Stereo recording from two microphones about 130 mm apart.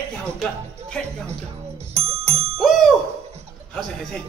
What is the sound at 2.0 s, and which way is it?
Music, 50° right (ahead or behind).